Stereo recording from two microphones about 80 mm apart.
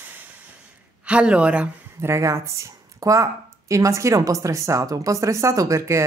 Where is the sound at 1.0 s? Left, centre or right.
Centre.